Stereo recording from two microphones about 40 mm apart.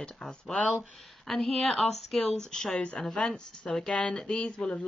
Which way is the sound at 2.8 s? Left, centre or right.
Left.